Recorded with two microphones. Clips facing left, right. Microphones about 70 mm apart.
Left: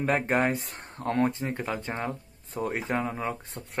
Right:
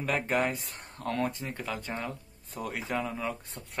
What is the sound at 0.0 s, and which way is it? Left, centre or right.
Speech, left.